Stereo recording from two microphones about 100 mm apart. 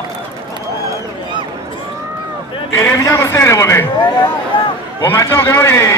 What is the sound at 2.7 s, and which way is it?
Speech, 20° left (ahead or behind).